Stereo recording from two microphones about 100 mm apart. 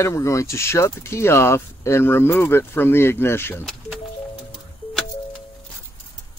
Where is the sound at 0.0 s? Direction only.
30° left (ahead or behind).